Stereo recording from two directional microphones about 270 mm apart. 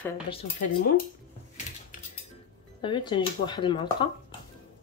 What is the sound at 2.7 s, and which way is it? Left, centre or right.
Speech, centre.